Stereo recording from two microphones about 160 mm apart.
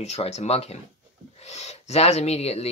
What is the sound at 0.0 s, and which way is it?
Speech, 40° left (ahead or behind).